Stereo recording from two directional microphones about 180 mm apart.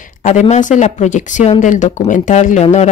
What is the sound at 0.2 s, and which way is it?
Speech, 40° left (ahead or behind).